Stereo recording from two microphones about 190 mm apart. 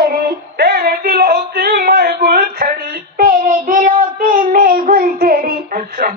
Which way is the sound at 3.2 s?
50° right (ahead or behind).